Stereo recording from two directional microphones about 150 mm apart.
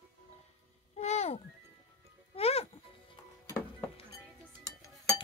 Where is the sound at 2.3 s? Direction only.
40° left (ahead or behind).